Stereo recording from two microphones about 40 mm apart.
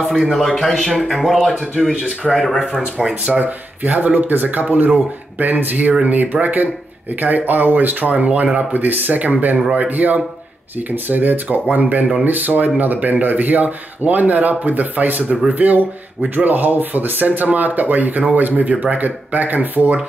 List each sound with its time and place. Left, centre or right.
0.2 s speech: centre
0.5 s speech: centre
3.3 s speech: right
3.8 s speech: right
8.7 s speech: right